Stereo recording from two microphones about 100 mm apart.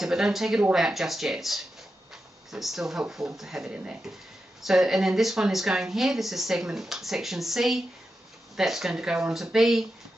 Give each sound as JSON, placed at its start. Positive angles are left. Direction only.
{"t": 0.0, "sound": "speech", "side_deg": -5}